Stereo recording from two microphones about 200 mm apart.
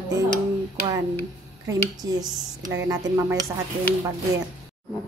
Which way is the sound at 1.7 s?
20° right (ahead or behind).